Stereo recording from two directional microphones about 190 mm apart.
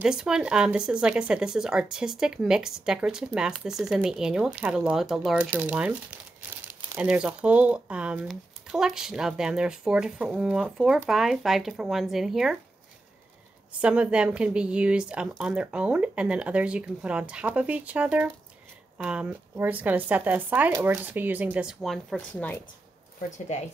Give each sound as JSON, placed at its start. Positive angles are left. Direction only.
{"t": 0.0, "sound": "speech", "side_deg": -5}
{"t": 13.7, "sound": "a woman's voice", "side_deg": -5}